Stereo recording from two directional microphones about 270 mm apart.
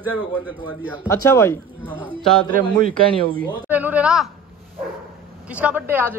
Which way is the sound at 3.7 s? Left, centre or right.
Centre.